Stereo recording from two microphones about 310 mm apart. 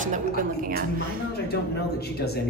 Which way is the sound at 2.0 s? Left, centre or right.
Left.